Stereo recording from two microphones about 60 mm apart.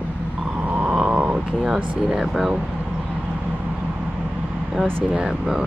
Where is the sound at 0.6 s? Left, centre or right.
Right.